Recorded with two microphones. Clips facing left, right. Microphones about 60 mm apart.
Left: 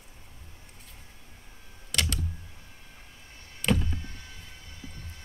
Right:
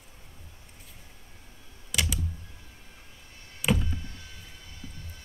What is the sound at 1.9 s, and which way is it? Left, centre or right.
Power windows, centre.